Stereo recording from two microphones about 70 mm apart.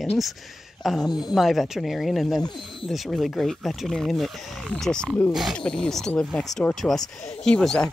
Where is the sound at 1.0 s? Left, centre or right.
Left.